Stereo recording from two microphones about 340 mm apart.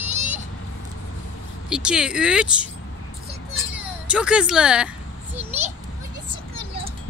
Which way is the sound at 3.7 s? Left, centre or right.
Centre.